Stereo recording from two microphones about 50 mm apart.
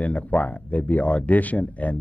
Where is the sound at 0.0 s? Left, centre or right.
Left.